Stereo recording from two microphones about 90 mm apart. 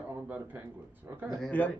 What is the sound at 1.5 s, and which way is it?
Speech, 15° left (ahead or behind).